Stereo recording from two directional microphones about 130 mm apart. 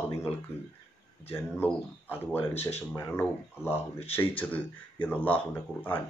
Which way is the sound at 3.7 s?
50° left (ahead or behind).